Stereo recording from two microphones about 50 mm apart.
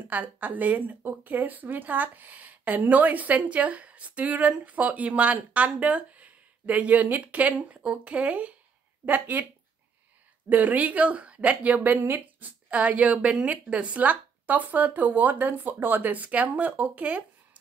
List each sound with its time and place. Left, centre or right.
0.1 s a woman's voice: right
10.5 s a woman's voice: right